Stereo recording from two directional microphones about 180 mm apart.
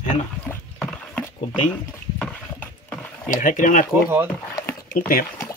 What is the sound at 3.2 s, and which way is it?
Speech, 45° left (ahead or behind).